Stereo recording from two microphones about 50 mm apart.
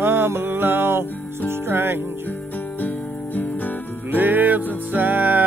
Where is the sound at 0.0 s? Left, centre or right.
Right.